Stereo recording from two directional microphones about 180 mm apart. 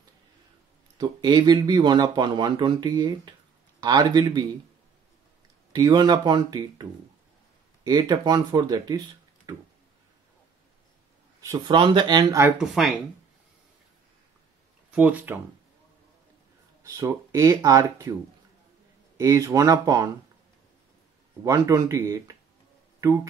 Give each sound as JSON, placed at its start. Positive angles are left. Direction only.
{"t": 0.9, "sound": "speech", "side_deg": -25}
{"t": 5.7, "sound": "speech", "side_deg": -25}
{"t": 9.5, "sound": "a sound", "side_deg": -20}
{"t": 11.4, "sound": "speech", "side_deg": -25}
{"t": 12.5, "sound": "speech", "side_deg": 0}
{"t": 14.9, "sound": "speech", "side_deg": -5}
{"t": 16.8, "sound": "speech", "side_deg": -15}
{"t": 19.1, "sound": "speech", "side_deg": -15}
{"t": 21.5, "sound": "speech", "side_deg": -15}